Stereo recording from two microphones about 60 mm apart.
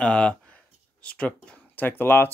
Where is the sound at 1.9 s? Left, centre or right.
Left.